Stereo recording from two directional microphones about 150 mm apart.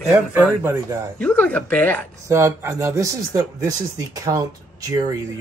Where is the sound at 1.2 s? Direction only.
10° left (ahead or behind).